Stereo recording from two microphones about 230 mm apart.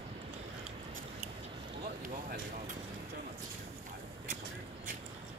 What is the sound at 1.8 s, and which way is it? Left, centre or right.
Vehicle, right.